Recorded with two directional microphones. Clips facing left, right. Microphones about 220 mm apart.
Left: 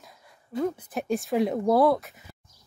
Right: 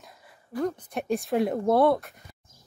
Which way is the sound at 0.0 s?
Centre (ahead or behind).